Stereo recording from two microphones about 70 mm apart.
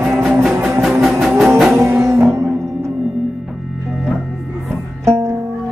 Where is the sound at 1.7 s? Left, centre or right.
Right.